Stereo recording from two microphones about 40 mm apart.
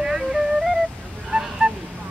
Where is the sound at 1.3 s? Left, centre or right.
Right.